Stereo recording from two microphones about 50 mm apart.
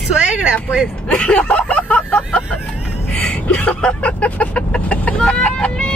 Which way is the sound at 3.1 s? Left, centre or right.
Left.